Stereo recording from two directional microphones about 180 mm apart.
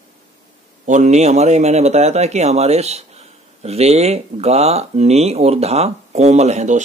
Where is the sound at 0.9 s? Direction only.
40° right (ahead or behind).